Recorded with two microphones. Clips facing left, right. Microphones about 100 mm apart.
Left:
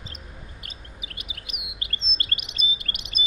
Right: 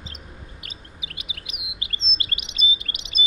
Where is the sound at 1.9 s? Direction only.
50° left (ahead or behind).